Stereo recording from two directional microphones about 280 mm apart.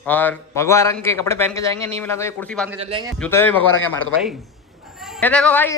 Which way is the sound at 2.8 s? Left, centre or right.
Centre.